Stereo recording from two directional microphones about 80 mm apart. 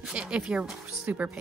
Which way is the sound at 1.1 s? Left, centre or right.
Right.